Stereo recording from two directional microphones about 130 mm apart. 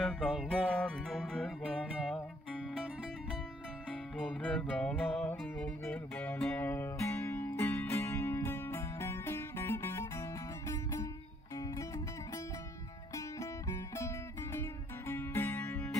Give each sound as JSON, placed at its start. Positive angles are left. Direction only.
{"t": 0.0, "sound": "music", "side_deg": 5}
{"t": 4.2, "sound": "music", "side_deg": 10}
{"t": 11.5, "sound": "music", "side_deg": 25}
{"t": 13.1, "sound": "music", "side_deg": 25}